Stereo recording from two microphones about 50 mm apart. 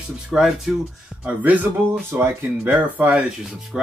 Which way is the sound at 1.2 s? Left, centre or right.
Right.